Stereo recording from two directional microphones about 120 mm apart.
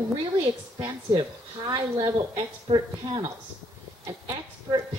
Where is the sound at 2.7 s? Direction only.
50° right (ahead or behind).